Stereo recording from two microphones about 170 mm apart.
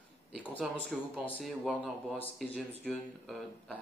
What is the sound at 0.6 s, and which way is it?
Speech, centre (ahead or behind).